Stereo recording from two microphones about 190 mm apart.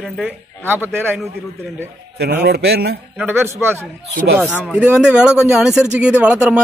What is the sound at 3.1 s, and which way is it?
A man's voice, 10° right (ahead or behind).